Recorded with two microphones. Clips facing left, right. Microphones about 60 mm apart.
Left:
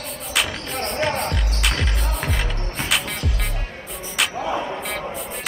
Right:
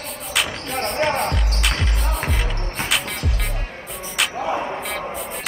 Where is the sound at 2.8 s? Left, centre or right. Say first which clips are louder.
Even; centre.